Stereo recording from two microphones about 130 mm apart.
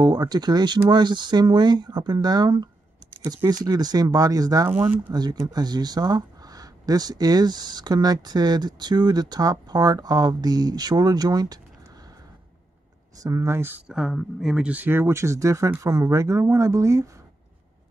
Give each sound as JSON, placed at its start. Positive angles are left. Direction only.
{"t": 0.0, "sound": "speech", "side_deg": -30}
{"t": 4.6, "sound": "speech", "side_deg": -15}
{"t": 5.1, "sound": "speech", "side_deg": -30}
{"t": 13.2, "sound": "speech", "side_deg": -25}